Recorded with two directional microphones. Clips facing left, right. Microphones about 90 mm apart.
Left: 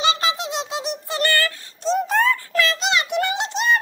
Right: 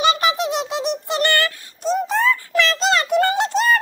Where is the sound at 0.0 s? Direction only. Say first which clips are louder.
Right 4 dB; 25° left (ahead or behind).